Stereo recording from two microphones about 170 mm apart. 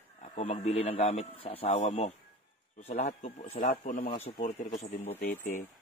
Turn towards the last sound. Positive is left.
turn(degrees=10)  # may be behind; listen again after turning